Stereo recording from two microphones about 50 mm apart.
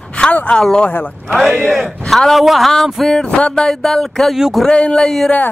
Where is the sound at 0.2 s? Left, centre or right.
Left.